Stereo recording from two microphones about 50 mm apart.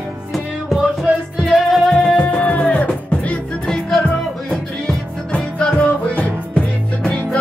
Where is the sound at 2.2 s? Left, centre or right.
Left.